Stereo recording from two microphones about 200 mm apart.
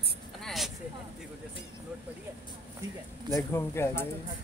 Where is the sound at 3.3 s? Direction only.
10° left (ahead or behind).